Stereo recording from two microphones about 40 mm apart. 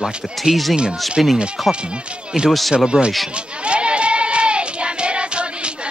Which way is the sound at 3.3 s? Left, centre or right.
Right.